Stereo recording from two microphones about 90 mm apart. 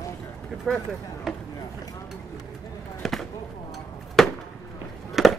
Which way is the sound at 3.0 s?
Centre (ahead or behind).